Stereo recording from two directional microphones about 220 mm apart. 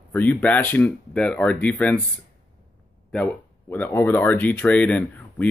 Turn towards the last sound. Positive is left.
turn(degrees=5)  # may be behind; listen again after turning